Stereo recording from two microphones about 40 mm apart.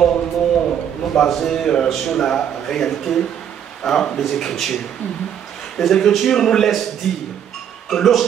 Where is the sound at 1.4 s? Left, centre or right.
Centre.